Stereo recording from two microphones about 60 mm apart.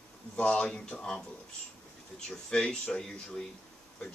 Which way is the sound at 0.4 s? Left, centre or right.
Centre.